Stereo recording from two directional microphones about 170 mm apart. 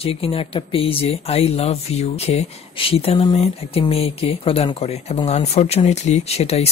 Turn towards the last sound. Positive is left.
turn(degrees=40)  # may be behind; listen again after turning